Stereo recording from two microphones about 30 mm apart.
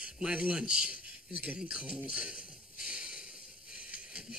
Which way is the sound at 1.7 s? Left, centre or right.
Right.